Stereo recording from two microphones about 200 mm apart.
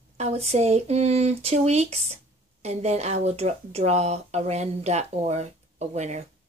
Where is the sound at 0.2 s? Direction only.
30° right (ahead or behind).